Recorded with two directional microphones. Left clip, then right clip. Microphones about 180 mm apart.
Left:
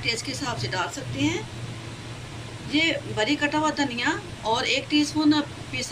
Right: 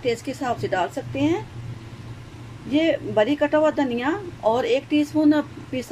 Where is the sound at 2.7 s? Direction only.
45° right (ahead or behind).